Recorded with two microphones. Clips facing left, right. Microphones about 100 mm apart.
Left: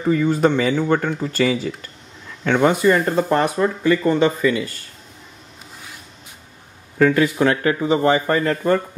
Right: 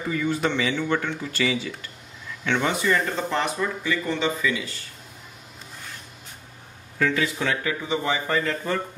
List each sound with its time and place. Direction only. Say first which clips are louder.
0.1 s speech: left 8 dB; 40° left (ahead or behind)
7.0 s speech: left 8 dB; 45° left (ahead or behind)